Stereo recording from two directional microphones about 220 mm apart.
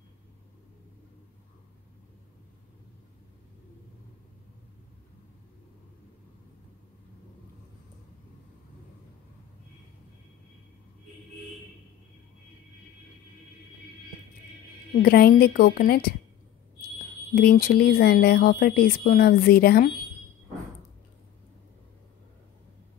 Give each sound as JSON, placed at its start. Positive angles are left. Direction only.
{"t": 15.0, "sound": "speech", "side_deg": 45}
{"t": 17.4, "sound": "speech", "side_deg": 45}